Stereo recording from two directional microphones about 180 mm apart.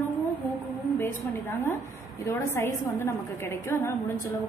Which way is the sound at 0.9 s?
10° left (ahead or behind).